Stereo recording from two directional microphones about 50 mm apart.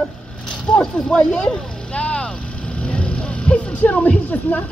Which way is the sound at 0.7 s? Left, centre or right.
Centre.